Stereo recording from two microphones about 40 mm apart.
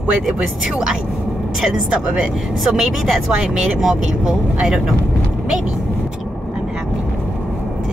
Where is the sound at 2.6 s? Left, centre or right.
Centre.